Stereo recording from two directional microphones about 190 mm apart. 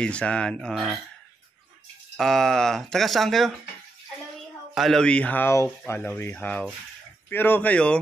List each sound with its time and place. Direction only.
0.0 s speech: 5° left (ahead or behind)
2.1 s speech: centre (ahead or behind)
4.7 s speech: centre (ahead or behind)